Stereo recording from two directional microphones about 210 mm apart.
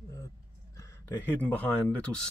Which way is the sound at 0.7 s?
10° left (ahead or behind).